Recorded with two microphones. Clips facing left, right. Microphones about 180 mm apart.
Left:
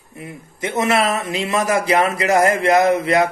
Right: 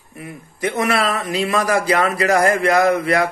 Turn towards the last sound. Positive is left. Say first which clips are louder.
# left 1 dB
turn(degrees=20)  # may be behind; listen again after turning